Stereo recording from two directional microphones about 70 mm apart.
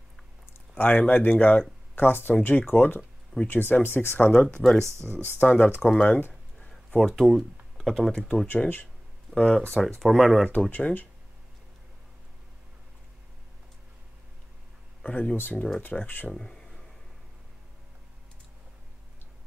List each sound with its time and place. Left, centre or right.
0.7 s speech: left
4.3 s speech: centre
4.6 s speech: centre
5.4 s speech: centre
5.9 s a sound: left
6.7 s a sound: centre
8.1 s speech: centre
8.5 s speech: left
9.3 s speech: centre
9.8 s speech: centre
10.7 s speech: left
15.0 s speech: centre
15.3 s speech: left
16.3 s a sound: centre